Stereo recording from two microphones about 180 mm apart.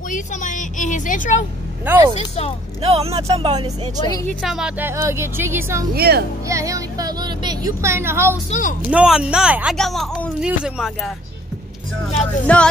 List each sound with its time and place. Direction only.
0.1 s a woman's voice: 45° left (ahead or behind)
2.1 s speech: 35° left (ahead or behind)
2.8 s speech: 35° right (ahead or behind)
4.3 s speech: centre (ahead or behind)
5.9 s speech: 60° right (ahead or behind)
6.4 s speech: 15° right (ahead or behind)
8.5 s a woman's voice: 45° left (ahead or behind)
8.9 s speech: 5° right (ahead or behind)
12.2 s speech: 5° left (ahead or behind)